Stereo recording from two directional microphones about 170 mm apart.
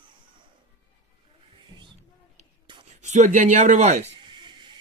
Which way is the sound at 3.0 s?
45° right (ahead or behind).